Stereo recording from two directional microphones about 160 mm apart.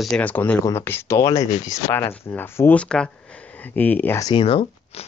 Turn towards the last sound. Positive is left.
turn(degrees=40)  # may be behind; listen again after turning